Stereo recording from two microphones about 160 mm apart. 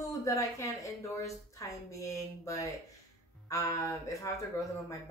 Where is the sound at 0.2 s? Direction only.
20° left (ahead or behind).